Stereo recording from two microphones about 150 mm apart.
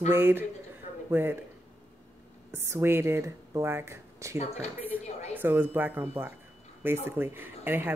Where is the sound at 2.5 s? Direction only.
15° right (ahead or behind).